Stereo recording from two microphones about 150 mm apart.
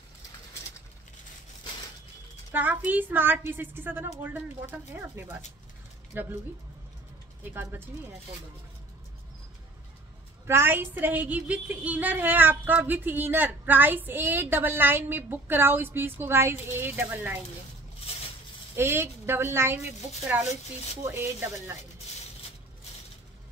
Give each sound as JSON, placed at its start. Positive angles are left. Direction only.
{"t": 2.5, "sound": "a woman's voice", "side_deg": -10}
{"t": 10.4, "sound": "a woman's voice", "side_deg": -15}
{"t": 18.8, "sound": "a woman's voice", "side_deg": -15}